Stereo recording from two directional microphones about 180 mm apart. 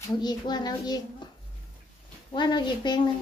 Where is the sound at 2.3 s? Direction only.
25° left (ahead or behind).